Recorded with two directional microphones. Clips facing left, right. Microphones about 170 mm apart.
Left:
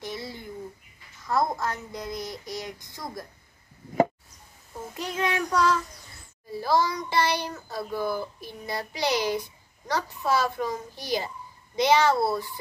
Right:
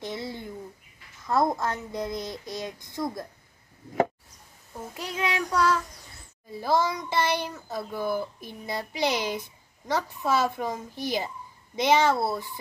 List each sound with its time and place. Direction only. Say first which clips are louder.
0.0 s a sound: right 2 dB; 25° right (ahead or behind)
1.2 s a child's voice: right 2 dB; 25° right (ahead or behind)
4.9 s child singing: left 2 dB; 10° right (ahead or behind)
6.5 s a child's voice: even; 20° right (ahead or behind)